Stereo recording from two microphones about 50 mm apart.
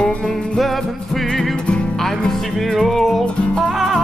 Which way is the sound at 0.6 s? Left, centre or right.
Centre.